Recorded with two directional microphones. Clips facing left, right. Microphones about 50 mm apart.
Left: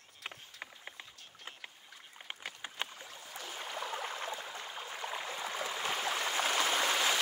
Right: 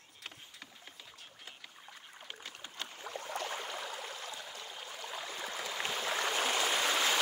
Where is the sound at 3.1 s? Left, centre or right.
Right.